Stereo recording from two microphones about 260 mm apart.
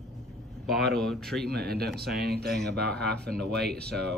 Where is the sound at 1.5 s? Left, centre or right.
Right.